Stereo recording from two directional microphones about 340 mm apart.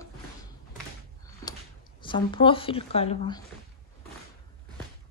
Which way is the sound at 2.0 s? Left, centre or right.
Centre.